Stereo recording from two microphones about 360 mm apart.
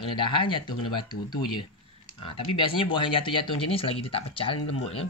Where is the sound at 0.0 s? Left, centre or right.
Centre.